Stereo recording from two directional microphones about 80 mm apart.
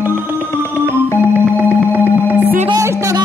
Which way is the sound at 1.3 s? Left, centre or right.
Right.